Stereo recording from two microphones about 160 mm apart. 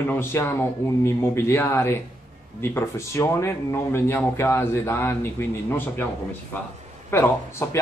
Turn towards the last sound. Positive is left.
turn(degrees=15)  # may be behind; listen again after turning